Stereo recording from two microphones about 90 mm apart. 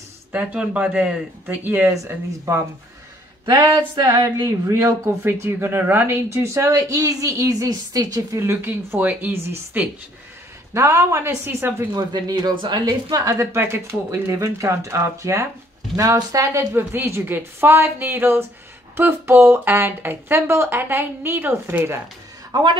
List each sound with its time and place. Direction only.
0.3 s speech: 15° right (ahead or behind)
3.4 s speech: 40° right (ahead or behind)
8.5 s speech: 20° right (ahead or behind)
11.9 s speech: 45° right (ahead or behind)
13.1 s speech: 35° right (ahead or behind)
16.7 s speech: 25° right (ahead or behind)
22.5 s speech: 50° right (ahead or behind)